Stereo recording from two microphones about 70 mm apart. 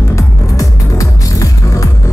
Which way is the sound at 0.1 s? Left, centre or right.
Left.